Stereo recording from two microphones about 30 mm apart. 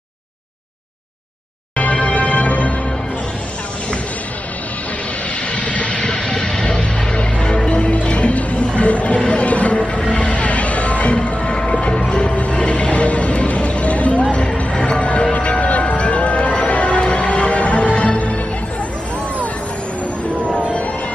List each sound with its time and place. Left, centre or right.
1.8 s music: left
5.5 s vehicle: left
6.2 s vehicle: left
6.8 s music: left
7.7 s music: left
14.3 s music: left
15.3 s music: left